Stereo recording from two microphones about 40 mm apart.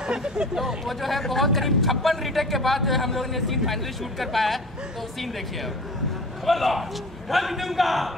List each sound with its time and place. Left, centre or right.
0.0 s speech: centre
0.6 s a man's voice: centre
6.4 s a man's voice: centre